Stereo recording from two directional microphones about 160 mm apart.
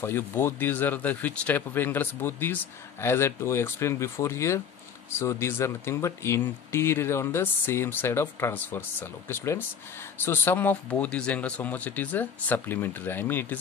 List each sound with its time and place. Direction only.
0.0 s speech: 15° left (ahead or behind)